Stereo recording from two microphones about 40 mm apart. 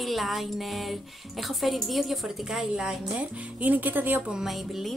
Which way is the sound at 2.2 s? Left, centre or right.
Centre.